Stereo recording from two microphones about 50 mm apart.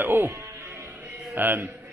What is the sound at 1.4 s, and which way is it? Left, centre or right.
Speech, right.